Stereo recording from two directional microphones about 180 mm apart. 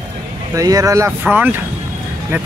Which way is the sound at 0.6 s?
20° right (ahead or behind).